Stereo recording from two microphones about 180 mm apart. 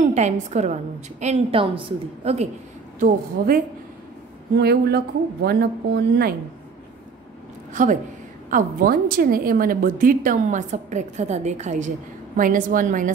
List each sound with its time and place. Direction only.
0.0 s a woman's voice: 40° right (ahead or behind)
3.0 s a woman's voice: 50° right (ahead or behind)
4.6 s a woman's voice: 65° right (ahead or behind)
7.7 s a woman's voice: 45° right (ahead or behind)